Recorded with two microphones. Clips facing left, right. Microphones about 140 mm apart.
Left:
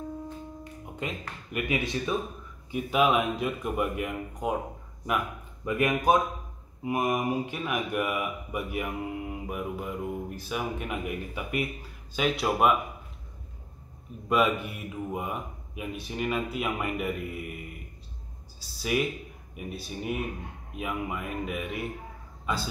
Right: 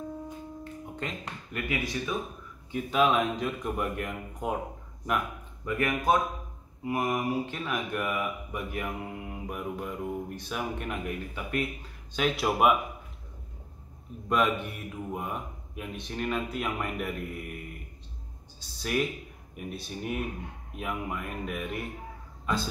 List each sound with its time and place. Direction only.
1.0 s speech: 10° left (ahead or behind)
1.5 s speech: 20° left (ahead or behind)
2.7 s a man's voice: 5° left (ahead or behind)
5.8 s a man's voice: 15° left (ahead or behind); by 12.7 s 5° right (ahead or behind)
14.3 s a man's voice: 5° left (ahead or behind)
18.6 s a man's voice: 5° left (ahead or behind)